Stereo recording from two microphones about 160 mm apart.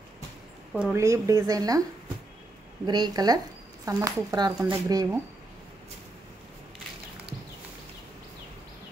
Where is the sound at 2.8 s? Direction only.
25° right (ahead or behind).